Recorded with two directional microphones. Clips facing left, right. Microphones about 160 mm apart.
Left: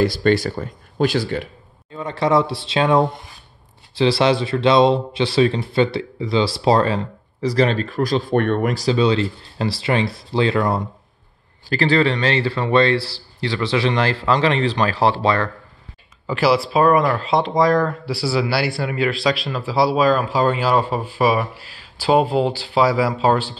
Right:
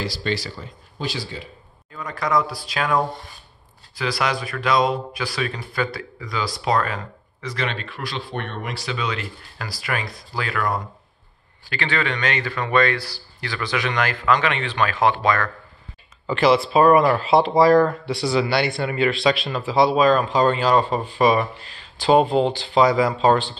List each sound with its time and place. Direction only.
0.0 s speech: 55° left (ahead or behind)
2.0 s speech: 25° left (ahead or behind)
16.3 s speech: 5° left (ahead or behind)